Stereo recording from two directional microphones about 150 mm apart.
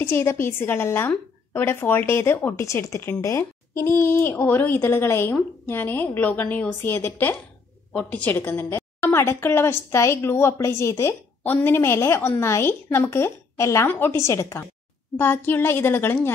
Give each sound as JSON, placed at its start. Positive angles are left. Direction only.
{"t": 0.0, "sound": "a woman's voice", "side_deg": 15}